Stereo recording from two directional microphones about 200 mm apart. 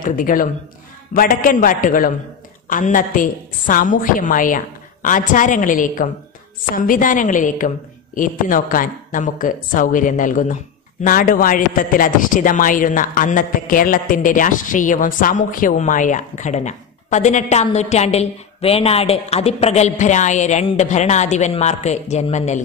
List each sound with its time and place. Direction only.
0.0 s a man's voice: 45° left (ahead or behind)